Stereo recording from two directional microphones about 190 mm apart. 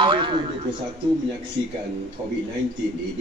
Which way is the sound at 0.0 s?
25° right (ahead or behind).